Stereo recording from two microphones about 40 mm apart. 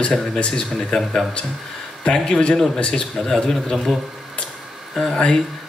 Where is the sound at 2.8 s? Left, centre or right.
Centre.